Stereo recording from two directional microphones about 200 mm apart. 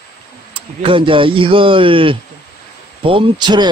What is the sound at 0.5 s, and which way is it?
Speech, 25° right (ahead or behind).